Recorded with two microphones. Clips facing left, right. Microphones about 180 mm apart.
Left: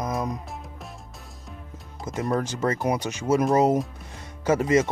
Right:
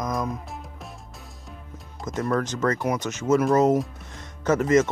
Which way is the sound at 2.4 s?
10° left (ahead or behind).